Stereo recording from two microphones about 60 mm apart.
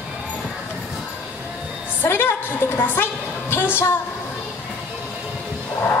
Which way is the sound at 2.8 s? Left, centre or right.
Left.